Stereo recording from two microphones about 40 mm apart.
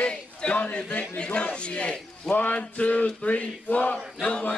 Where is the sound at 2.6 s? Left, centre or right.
Left.